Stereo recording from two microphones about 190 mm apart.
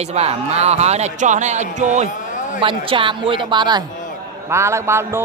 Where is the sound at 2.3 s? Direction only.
40° left (ahead or behind).